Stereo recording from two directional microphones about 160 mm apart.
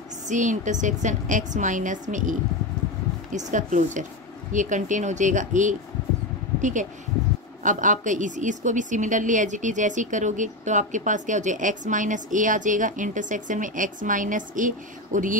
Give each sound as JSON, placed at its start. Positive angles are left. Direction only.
{"t": 0.3, "sound": "a woman's voice", "side_deg": -50}